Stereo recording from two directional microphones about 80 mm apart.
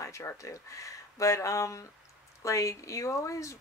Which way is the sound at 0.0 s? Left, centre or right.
Left.